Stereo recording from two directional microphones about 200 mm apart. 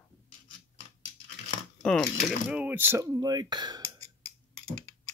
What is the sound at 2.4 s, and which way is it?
Speech, 5° right (ahead or behind).